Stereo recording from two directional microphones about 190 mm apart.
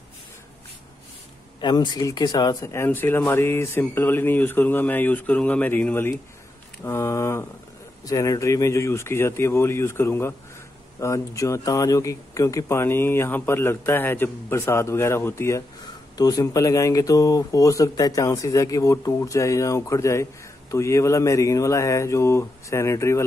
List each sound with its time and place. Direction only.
1.6 s speech: 20° left (ahead or behind)